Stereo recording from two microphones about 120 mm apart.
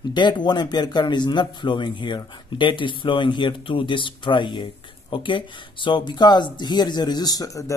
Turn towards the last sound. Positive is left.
turn(degrees=30)  # may be behind; listen again after turning